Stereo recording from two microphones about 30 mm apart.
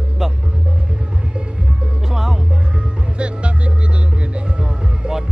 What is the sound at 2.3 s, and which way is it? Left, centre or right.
Music, right.